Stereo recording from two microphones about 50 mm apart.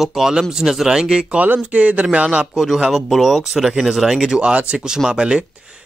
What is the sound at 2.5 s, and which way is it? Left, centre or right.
A man's voice, centre.